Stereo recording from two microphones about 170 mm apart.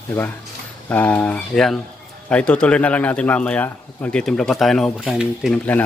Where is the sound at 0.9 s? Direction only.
10° left (ahead or behind).